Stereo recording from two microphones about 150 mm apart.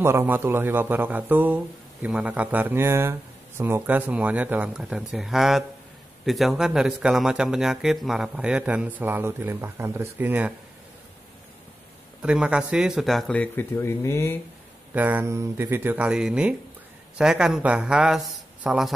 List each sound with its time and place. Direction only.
0.0 s speech: 15° right (ahead or behind)
12.2 s speech: 5° right (ahead or behind); by 14.4 s 20° left (ahead or behind)
15.0 s speech: 10° right (ahead or behind)